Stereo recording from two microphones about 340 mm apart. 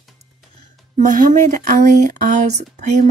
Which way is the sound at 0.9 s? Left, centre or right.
Right.